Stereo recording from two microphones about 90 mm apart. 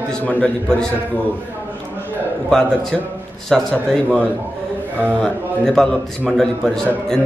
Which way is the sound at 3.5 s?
5° left (ahead or behind).